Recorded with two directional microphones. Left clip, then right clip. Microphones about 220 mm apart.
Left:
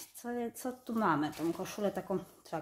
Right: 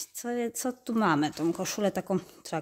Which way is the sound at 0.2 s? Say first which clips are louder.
Right 7 dB; 45° right (ahead or behind).